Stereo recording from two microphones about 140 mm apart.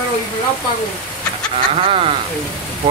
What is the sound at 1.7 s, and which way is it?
Speech, 45° right (ahead or behind).